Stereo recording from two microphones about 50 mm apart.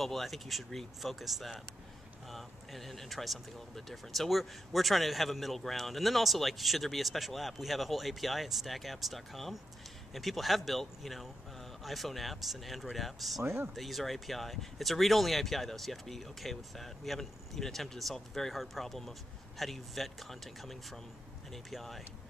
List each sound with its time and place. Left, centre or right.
0.0 s speech: centre
13.4 s speech: right
13.7 s speech: centre